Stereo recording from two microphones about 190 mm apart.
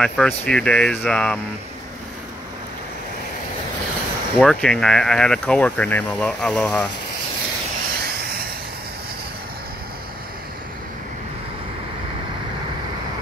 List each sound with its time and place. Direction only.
0.0 s speech: 5° left (ahead or behind)
4.4 s speech: 5° left (ahead or behind)
8.0 s a sound: 50° right (ahead or behind)